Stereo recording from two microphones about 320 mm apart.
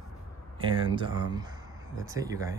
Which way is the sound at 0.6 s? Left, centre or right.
Centre.